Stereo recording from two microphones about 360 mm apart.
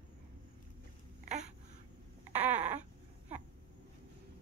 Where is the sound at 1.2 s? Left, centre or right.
Centre.